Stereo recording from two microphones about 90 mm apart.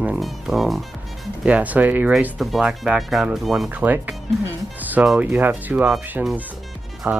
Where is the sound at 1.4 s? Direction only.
15° right (ahead or behind).